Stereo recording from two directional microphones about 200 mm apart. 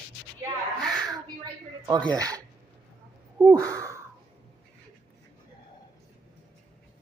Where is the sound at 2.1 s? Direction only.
20° right (ahead or behind).